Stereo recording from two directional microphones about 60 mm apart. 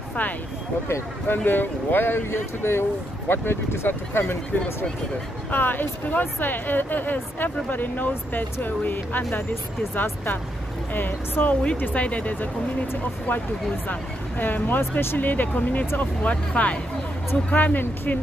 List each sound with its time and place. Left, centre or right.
1.2 s speech: left
5.5 s speech: left